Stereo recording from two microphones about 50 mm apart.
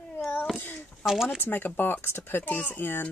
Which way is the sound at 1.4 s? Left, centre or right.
Left.